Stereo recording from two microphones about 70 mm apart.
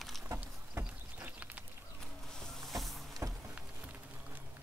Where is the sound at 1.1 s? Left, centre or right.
Right.